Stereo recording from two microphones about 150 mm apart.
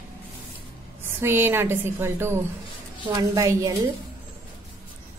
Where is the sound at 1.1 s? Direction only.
15° right (ahead or behind).